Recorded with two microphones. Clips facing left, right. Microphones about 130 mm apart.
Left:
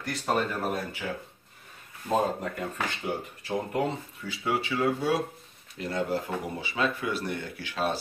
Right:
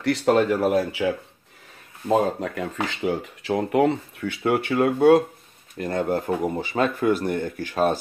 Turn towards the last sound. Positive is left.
turn(degrees=-45)  # may be behind; listen again after turning